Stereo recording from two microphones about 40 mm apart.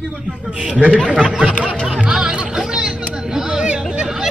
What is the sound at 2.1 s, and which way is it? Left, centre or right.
Music, right.